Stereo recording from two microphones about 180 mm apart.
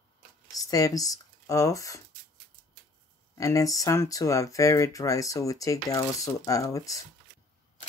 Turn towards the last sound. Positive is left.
turn(degrees=20)  # may be behind; listen again after turning